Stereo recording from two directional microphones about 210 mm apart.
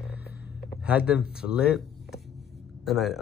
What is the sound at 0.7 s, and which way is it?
Speech, 5° right (ahead or behind).